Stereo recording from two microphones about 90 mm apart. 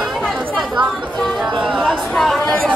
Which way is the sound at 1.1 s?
5° left (ahead or behind).